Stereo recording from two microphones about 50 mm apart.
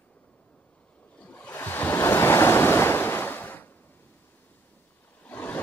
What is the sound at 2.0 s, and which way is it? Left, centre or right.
Waves, left.